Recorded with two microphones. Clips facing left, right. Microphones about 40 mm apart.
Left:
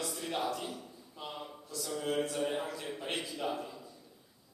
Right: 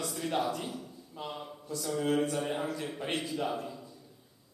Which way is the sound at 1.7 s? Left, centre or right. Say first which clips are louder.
Right 5 dB; centre.